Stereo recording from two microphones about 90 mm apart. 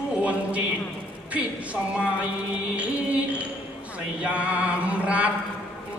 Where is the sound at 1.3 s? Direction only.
15° right (ahead or behind).